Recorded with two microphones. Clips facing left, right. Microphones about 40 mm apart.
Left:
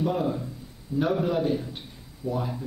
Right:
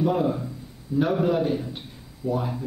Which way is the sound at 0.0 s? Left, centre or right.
Centre.